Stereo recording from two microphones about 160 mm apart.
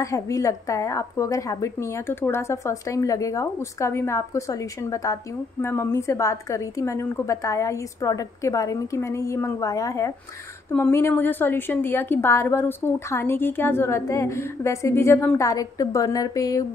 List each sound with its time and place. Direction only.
0.0 s a woman's voice: 20° left (ahead or behind)